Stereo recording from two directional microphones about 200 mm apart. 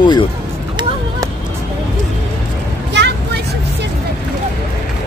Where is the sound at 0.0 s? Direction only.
20° left (ahead or behind).